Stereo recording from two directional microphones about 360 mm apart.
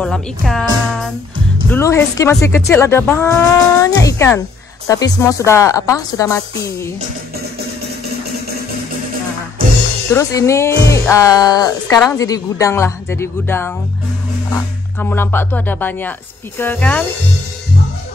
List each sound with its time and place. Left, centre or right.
0.0 s speech: centre
10.1 s speech: centre
15.0 s speech: centre